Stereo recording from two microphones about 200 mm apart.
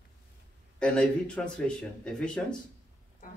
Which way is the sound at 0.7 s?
5° left (ahead or behind).